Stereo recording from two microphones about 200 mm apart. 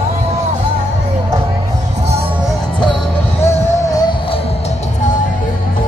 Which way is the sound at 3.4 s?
15° left (ahead or behind).